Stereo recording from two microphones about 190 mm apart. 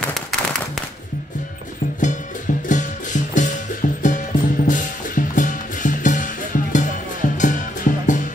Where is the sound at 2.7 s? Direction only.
40° left (ahead or behind).